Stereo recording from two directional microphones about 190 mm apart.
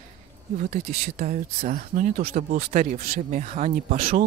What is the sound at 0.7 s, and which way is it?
Speech, 40° right (ahead or behind).